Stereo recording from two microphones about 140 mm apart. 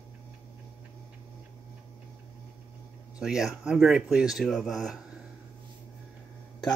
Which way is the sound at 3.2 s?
Centre (ahead or behind).